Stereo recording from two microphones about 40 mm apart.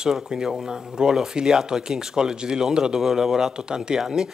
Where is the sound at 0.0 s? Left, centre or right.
Centre.